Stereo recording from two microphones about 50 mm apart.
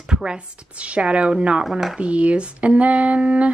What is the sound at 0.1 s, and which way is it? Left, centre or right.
Speech, centre.